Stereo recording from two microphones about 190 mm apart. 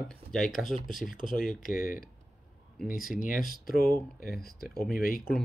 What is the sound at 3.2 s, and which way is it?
Speech, 45° left (ahead or behind).